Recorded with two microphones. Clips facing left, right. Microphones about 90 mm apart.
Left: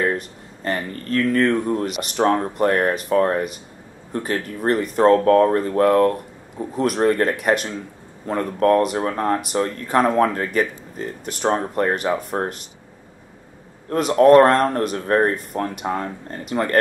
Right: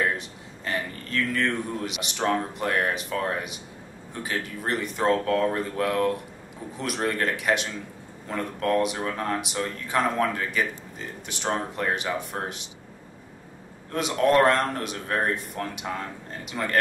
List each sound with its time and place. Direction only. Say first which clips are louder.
0.7 s speech: left 6 dB; 45° left (ahead or behind)
13.8 s speech: left 9 dB; 45° left (ahead or behind)